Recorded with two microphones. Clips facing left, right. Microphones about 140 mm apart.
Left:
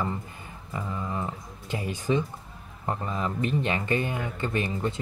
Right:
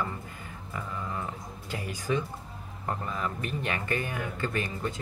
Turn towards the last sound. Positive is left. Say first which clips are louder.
# left 3 dB
turn(degrees=20)  # may be behind; listen again after turning